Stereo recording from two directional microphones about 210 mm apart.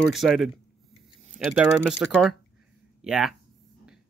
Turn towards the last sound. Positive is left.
turn(degrees=-5)  # may be behind; listen again after turning